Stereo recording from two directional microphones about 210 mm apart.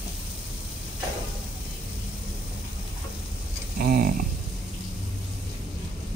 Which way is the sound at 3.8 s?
40° right (ahead or behind).